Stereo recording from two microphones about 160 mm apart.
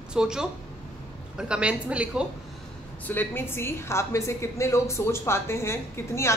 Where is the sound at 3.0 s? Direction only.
10° left (ahead or behind).